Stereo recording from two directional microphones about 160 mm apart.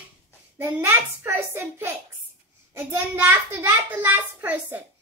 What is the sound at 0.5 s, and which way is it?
A child's voice, 15° right (ahead or behind).